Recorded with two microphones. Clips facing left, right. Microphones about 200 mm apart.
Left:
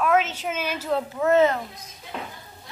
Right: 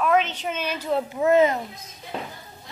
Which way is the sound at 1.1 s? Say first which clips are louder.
Right 1 dB; 15° right (ahead or behind).